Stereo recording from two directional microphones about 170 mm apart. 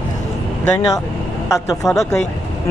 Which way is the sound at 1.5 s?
20° left (ahead or behind).